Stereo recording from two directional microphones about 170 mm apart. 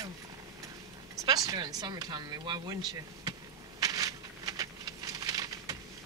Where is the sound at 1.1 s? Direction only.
20° right (ahead or behind).